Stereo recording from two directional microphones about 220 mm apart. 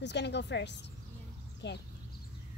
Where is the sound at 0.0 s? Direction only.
50° left (ahead or behind).